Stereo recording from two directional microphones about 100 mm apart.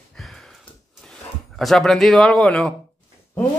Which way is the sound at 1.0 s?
5° left (ahead or behind).